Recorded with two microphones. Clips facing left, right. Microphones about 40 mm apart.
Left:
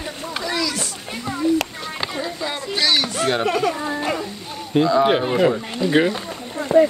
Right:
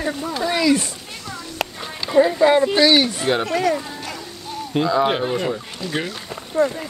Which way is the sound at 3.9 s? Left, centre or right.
Left.